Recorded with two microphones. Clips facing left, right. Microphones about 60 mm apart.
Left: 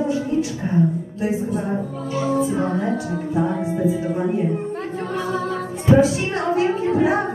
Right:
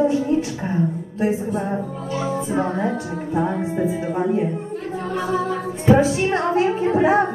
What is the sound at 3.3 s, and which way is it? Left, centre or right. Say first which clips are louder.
Speech: right 1 dB; right.